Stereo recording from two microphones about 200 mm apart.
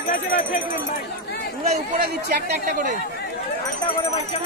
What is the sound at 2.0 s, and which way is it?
Speech, 55° right (ahead or behind).